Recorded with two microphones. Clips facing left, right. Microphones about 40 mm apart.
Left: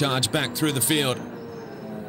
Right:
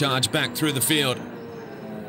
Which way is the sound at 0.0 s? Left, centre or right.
Right.